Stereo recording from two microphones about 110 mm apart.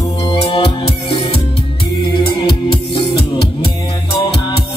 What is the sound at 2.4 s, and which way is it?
Music, 45° left (ahead or behind).